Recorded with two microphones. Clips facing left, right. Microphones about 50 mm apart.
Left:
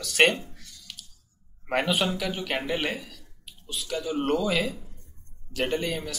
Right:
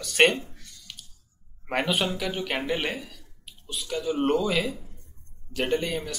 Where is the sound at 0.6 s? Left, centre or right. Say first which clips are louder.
Even; centre.